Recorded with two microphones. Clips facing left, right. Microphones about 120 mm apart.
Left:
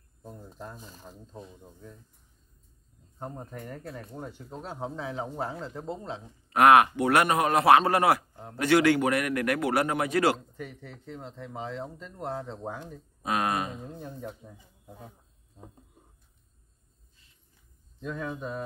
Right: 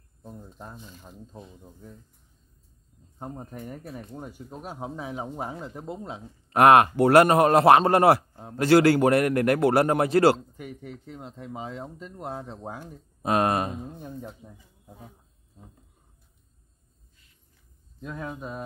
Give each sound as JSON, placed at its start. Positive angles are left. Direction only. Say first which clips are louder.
{"t": 3.2, "sound": "speech", "louder": "right 1 dB", "side_deg": -15}
{"t": 6.5, "sound": "a man's voice", "louder": "right 2 dB", "side_deg": -35}
{"t": 10.5, "sound": "speech", "louder": "right 2 dB", "side_deg": -15}
{"t": 13.2, "sound": "speech", "louder": "right 5 dB", "side_deg": -40}
{"t": 13.8, "sound": "speech", "louder": "right 1 dB", "side_deg": -15}
{"t": 18.0, "sound": "speech", "louder": "left 1 dB", "side_deg": -5}